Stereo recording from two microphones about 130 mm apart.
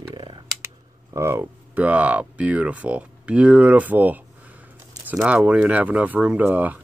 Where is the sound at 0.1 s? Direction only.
35° right (ahead or behind).